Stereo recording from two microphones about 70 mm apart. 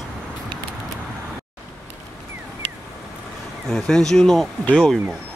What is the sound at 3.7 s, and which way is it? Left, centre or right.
Speech, centre.